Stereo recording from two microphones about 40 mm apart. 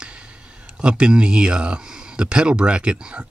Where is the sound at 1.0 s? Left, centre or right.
Right.